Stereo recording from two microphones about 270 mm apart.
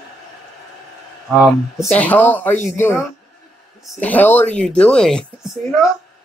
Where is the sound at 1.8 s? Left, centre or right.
Centre.